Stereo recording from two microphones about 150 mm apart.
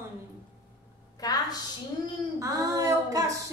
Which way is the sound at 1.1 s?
25° left (ahead or behind).